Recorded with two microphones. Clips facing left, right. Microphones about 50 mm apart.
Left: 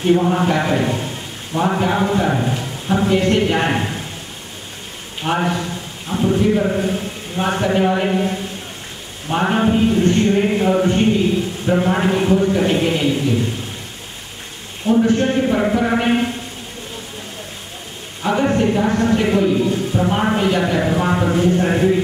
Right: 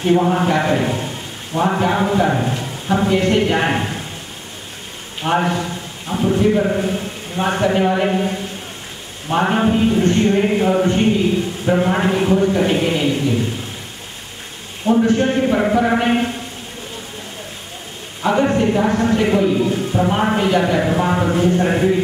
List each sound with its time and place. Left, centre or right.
0.0 s a man's voice: centre
5.2 s a man's voice: centre
14.9 s speech: centre
18.2 s speech: centre